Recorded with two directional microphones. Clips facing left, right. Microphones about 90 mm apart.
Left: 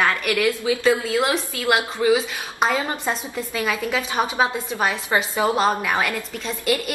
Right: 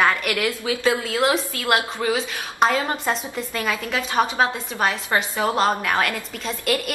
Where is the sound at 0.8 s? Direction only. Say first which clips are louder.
Even; centre (ahead or behind).